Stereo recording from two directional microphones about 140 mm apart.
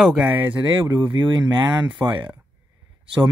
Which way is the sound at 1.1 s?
35° right (ahead or behind).